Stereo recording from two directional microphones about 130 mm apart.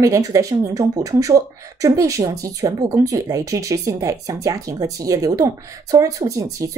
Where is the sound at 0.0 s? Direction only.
25° right (ahead or behind).